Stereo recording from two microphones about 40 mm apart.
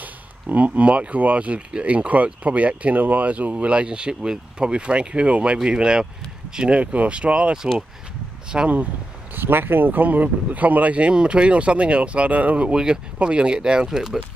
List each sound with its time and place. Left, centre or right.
0.0 s speech: right
6.7 s speech: right
8.5 s speech: right
9.3 s speech: right
13.8 s speech: centre